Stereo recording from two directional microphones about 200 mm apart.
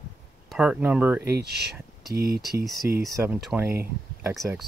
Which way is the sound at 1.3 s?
55° right (ahead or behind).